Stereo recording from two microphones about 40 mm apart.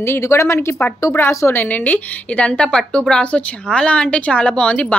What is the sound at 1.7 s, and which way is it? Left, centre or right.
A woman's voice, left.